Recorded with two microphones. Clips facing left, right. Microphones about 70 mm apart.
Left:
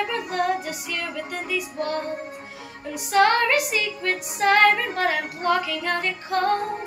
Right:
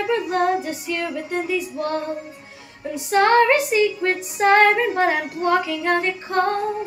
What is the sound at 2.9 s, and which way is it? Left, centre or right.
Female singing, right.